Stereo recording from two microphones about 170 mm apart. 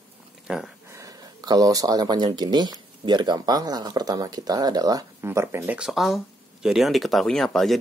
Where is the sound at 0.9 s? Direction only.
20° right (ahead or behind).